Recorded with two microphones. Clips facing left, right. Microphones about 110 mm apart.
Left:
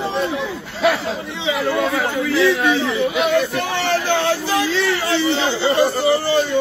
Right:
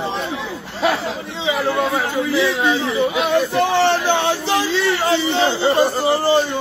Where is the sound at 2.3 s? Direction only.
20° right (ahead or behind).